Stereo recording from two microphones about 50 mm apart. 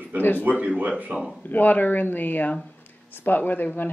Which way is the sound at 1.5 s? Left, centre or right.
Left.